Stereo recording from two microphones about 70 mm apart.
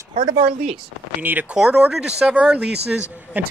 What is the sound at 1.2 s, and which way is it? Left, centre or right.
Speech, right.